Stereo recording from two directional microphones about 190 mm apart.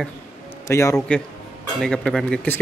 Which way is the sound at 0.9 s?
5° left (ahead or behind).